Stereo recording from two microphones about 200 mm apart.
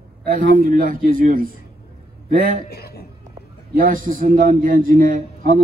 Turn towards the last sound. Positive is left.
turn(degrees=-45)  # may be behind; listen again after turning